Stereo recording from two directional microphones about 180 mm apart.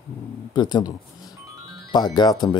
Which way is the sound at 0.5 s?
25° left (ahead or behind).